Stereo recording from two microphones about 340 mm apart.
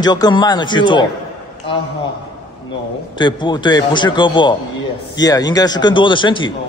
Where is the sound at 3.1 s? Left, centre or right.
Centre.